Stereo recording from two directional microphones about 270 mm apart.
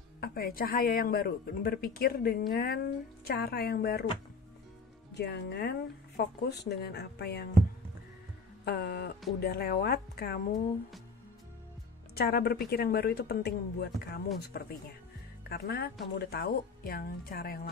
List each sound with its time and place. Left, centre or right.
0.2 s speech: left
5.1 s speech: left
8.6 s speech: left
12.2 s speech: left